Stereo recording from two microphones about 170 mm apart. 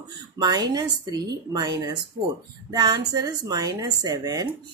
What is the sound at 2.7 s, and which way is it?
Speech, 25° right (ahead or behind).